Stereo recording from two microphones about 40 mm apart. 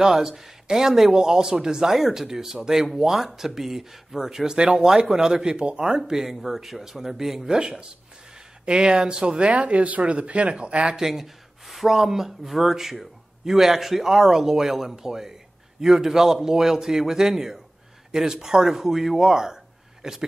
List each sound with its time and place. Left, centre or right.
0.0 s speech: centre
11.0 s speech: centre